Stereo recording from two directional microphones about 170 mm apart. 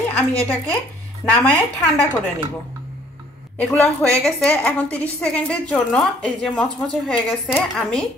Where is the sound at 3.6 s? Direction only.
5° left (ahead or behind).